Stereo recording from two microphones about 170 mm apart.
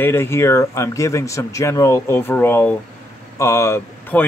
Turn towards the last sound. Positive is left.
turn(degrees=10)  # may be behind; listen again after turning